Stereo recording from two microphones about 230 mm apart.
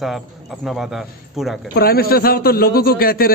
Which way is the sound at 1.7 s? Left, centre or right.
Left.